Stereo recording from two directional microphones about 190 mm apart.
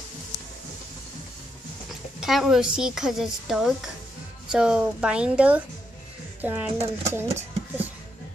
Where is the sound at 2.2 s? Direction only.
Centre (ahead or behind).